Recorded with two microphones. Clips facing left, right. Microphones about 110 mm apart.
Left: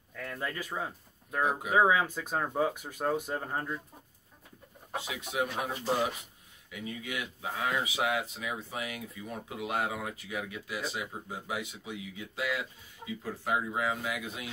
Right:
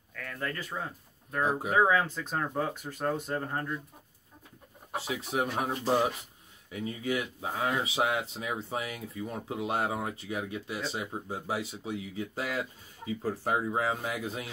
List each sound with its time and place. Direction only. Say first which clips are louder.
0.1 s a sound: even; 15° left (ahead or behind)
1.7 s speech: even; 10° left (ahead or behind)
4.9 s speech: right 2 dB; 35° right (ahead or behind)